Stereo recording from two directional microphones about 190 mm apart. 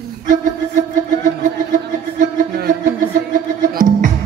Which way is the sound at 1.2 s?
45° right (ahead or behind).